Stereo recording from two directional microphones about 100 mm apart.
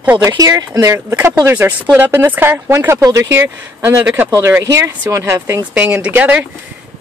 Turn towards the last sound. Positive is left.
turn(degrees=-15)  # may be behind; listen again after turning